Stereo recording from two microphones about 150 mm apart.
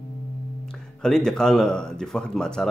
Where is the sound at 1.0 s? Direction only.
5° left (ahead or behind).